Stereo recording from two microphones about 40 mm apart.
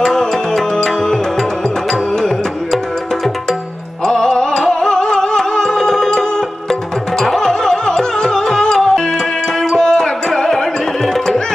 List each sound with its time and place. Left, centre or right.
0.0 s music: centre
4.0 s music: centre